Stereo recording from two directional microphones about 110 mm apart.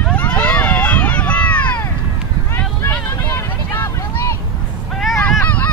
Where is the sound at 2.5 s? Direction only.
20° left (ahead or behind).